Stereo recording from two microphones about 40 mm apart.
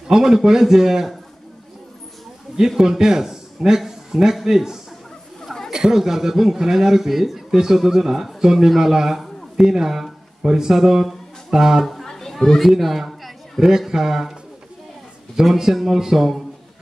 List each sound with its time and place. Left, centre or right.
0.1 s a man's voice: centre
2.5 s speech: centre
5.4 s a sound: centre
5.7 s a man's voice: centre
12.0 s a sound: centre
13.7 s a man's voice: centre
15.5 s a man's voice: centre